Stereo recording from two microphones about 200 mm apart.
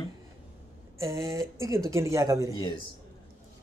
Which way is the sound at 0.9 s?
15° right (ahead or behind).